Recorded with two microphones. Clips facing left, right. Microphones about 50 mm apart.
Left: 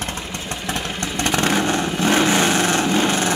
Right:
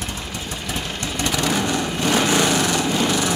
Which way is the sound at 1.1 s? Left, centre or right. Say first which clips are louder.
Left 3 dB; left.